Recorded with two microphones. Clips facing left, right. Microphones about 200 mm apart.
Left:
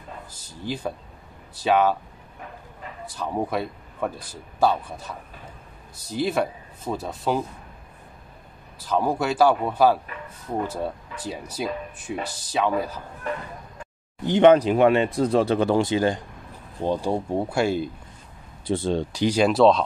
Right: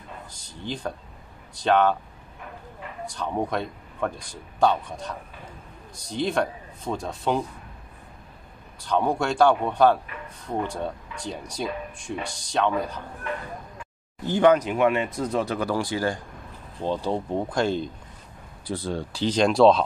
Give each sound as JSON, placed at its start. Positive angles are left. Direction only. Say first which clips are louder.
{"t": 0.4, "sound": "speech", "louder": "left 2 dB", "side_deg": 5}
{"t": 3.1, "sound": "speech", "louder": "left 1 dB", "side_deg": 5}
{"t": 8.7, "sound": "speech", "louder": "even", "side_deg": 0}
{"t": 14.2, "sound": "speech", "louder": "left 4 dB", "side_deg": 20}
{"t": 18.7, "sound": "speech", "louder": "left 6 dB", "side_deg": 25}